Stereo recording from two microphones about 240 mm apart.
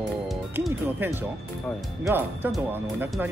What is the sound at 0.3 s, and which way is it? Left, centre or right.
Music, centre.